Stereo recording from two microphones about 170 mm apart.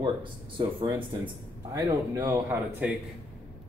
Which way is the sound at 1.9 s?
20° right (ahead or behind).